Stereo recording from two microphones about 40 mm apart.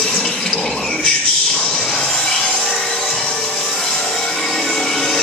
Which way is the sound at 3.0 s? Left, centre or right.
Centre.